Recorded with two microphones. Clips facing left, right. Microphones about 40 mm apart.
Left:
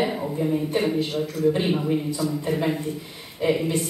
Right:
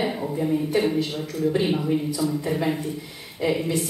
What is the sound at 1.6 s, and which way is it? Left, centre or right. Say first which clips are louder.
Speech: even; centre.